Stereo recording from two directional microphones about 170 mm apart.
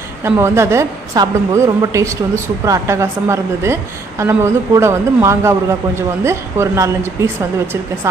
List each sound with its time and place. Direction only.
0.2 s a woman's voice: 15° right (ahead or behind)